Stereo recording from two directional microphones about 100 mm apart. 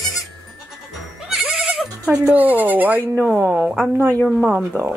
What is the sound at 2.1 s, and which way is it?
Speech, 15° right (ahead or behind).